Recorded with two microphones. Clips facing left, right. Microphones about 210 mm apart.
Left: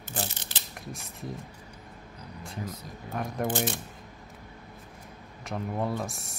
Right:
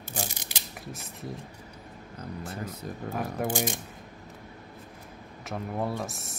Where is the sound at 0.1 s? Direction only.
10° right (ahead or behind).